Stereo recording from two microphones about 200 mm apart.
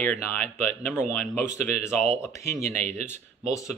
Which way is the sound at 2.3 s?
15° left (ahead or behind).